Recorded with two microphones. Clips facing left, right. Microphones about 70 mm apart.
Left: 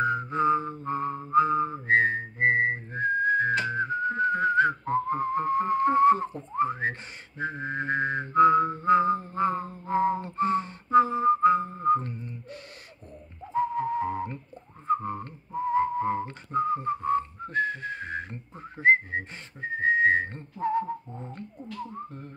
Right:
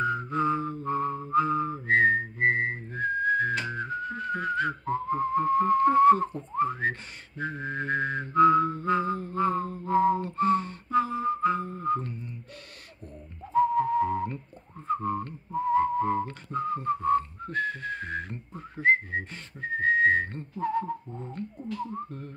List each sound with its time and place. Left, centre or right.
0.0 s mantra: left
1.3 s whistling: left
8.4 s music: left
13.4 s whistling: centre
15.5 s whistling: centre
20.8 s a sound: centre